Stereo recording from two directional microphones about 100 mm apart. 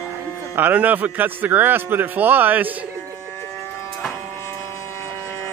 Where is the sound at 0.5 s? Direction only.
15° right (ahead or behind).